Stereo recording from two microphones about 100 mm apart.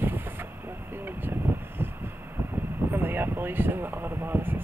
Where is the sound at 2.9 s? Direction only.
20° right (ahead or behind).